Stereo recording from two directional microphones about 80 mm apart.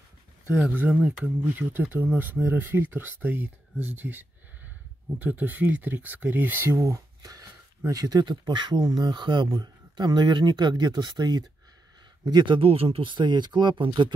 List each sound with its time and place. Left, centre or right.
0.7 s speech: right
7.2 s a sound: right
7.9 s speech: right
12.3 s speech: right